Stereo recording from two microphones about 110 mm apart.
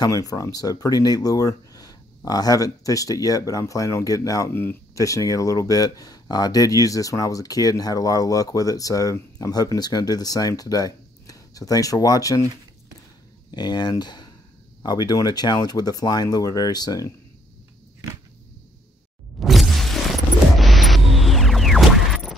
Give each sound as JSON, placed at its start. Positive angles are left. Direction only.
{"t": 0.0, "sound": "speech", "side_deg": 35}
{"t": 4.5, "sound": "speech", "side_deg": 20}
{"t": 4.9, "sound": "speech", "side_deg": 30}
{"t": 13.5, "sound": "speech", "side_deg": 40}
{"t": 19.4, "sound": "a sound", "side_deg": 0}